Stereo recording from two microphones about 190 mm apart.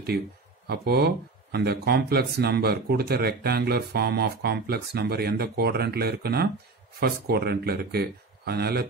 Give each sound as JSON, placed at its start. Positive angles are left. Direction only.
{"t": 0.7, "sound": "speech", "side_deg": -55}